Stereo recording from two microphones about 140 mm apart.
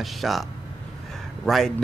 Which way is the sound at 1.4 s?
5° left (ahead or behind).